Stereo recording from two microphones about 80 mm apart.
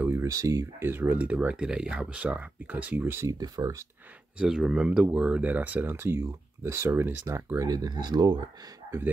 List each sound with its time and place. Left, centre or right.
0.0 s a sound: right
0.3 s speech: right
3.3 s speech: right
4.4 s speech: centre; by 7.2 s right
7.5 s speech: right